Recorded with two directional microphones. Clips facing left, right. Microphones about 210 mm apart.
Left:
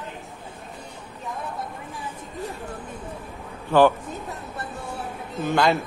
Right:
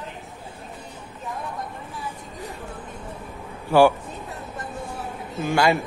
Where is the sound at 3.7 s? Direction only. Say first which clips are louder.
Right 1 dB; 10° right (ahead or behind).